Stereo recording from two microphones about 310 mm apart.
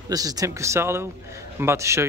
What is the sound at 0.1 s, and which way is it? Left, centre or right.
A man's voice, centre.